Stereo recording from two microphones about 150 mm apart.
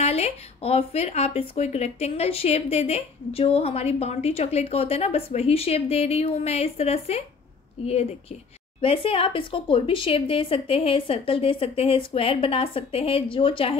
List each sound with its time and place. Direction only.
0.0 s speech: 45° left (ahead or behind)